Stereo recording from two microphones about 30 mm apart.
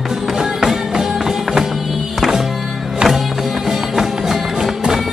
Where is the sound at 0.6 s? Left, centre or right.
Centre.